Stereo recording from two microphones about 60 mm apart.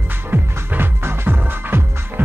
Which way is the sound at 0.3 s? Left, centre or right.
Right.